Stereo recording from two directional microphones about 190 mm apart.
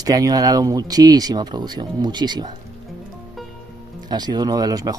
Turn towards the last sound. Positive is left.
turn(degrees=-20)  # may be behind; listen again after turning